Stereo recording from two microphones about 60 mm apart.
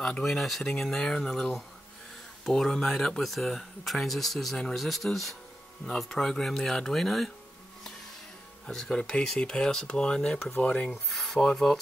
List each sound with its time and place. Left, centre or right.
0.0 s speech: centre
8.6 s speech: centre
10.9 s speech: centre